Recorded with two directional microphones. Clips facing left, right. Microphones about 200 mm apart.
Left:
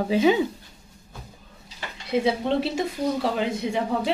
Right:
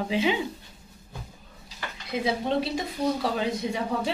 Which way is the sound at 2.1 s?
25° left (ahead or behind).